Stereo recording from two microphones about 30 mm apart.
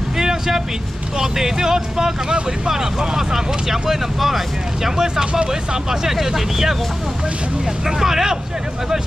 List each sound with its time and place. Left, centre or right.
0.2 s vehicle: centre
1.2 s speech: centre
5.1 s speech: right; by 6.8 s centre
7.8 s speech: centre